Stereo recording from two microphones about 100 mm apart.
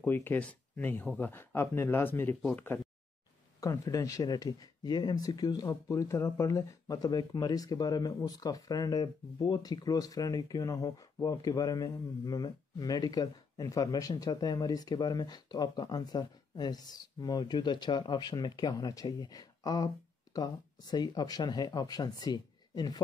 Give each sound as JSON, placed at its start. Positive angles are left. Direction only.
{"t": 0.0, "sound": "speech", "side_deg": 20}
{"t": 3.6, "sound": "speech", "side_deg": 35}